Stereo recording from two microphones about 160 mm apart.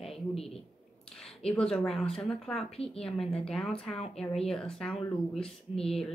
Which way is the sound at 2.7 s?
40° left (ahead or behind).